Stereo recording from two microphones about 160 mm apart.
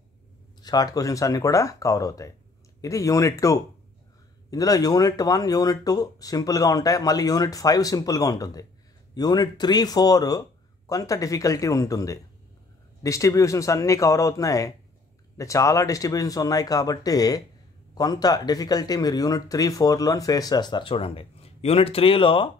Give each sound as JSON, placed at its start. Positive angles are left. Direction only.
{"t": 0.6, "sound": "speech", "side_deg": 25}